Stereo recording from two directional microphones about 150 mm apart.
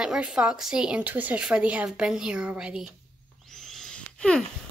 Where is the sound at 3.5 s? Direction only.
5° left (ahead or behind).